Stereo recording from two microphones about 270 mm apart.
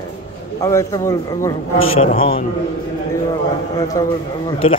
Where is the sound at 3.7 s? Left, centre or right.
Centre.